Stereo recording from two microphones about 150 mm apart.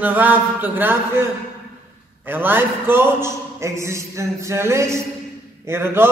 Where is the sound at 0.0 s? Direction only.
10° right (ahead or behind).